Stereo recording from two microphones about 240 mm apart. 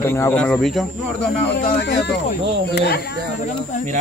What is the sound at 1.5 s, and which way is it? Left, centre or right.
Speech, left.